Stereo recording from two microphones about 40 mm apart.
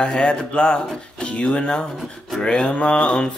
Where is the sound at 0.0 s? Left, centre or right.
Left.